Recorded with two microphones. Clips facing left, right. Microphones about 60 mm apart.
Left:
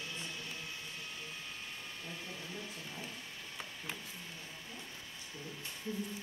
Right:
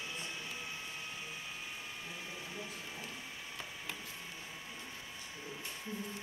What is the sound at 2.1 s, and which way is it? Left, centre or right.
Printer, centre.